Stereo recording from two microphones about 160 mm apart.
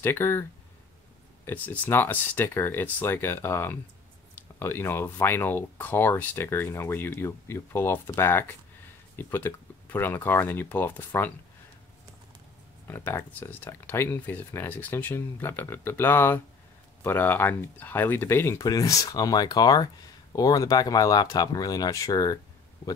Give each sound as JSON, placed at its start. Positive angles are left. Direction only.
{"t": 0.0, "sound": "speech", "side_deg": 15}
{"t": 12.8, "sound": "speech", "side_deg": 15}